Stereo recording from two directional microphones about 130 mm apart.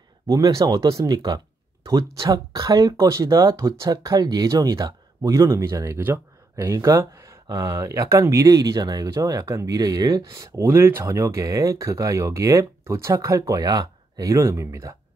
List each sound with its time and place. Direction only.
0.3 s speech: 25° right (ahead or behind)